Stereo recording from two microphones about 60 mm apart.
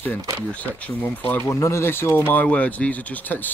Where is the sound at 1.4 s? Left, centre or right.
Left.